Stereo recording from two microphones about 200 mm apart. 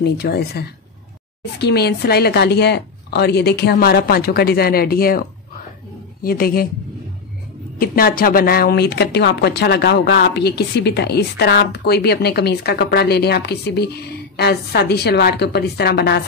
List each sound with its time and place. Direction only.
0.0 s speech: 55° left (ahead or behind)
6.2 s speech: 45° left (ahead or behind)
7.8 s speech: 45° left (ahead or behind)